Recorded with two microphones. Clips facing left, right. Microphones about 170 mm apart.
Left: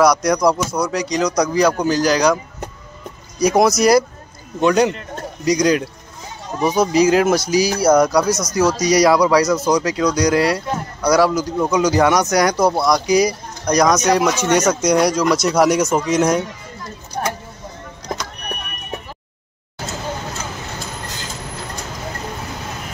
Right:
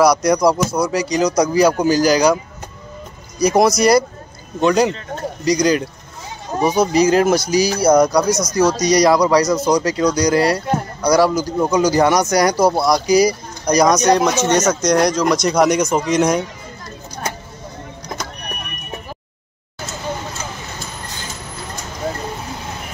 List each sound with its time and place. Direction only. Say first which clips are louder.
0.0 s speech: right 1 dB; centre (ahead or behind)
3.3 s speech: right 1 dB; centre (ahead or behind)
17.2 s a sound: left 4 dB; 55° left (ahead or behind)